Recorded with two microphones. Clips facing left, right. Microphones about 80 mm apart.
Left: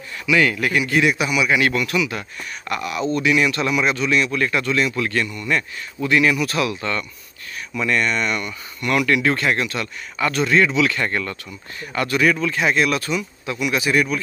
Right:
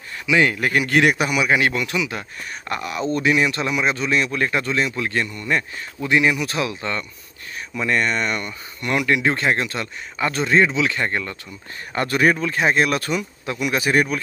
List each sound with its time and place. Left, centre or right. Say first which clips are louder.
0.3 s speech: even; right
0.8 s a man's voice: right 3 dB; right
1.6 s speech: left 2 dB; right
11.9 s speech: even; right